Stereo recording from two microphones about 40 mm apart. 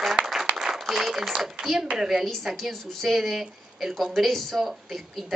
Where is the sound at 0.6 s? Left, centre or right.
Centre.